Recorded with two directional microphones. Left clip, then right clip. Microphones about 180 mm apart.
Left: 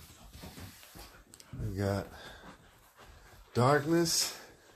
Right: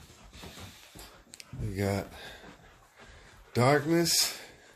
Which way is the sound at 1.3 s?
15° right (ahead or behind).